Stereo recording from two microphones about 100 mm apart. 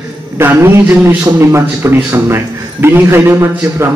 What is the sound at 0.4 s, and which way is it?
A man's voice, 25° right (ahead or behind).